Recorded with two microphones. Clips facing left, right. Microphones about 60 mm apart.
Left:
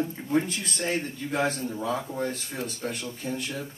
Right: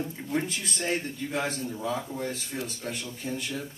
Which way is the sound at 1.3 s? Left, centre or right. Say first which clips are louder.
Left 4 dB; left.